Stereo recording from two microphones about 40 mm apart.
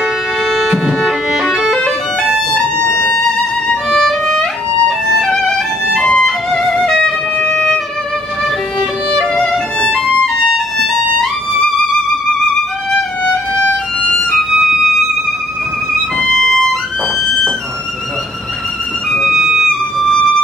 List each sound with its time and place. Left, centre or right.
0.0 s music: centre
3.9 s violin: centre
5.1 s music: centre
7.3 s music: left
13.2 s violin: left
14.5 s music: centre
16.2 s violin: centre